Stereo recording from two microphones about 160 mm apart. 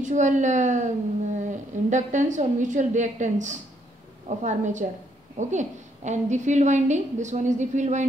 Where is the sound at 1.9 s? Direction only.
50° right (ahead or behind).